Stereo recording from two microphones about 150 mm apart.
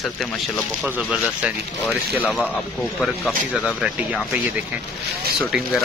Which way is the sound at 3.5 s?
5° right (ahead or behind).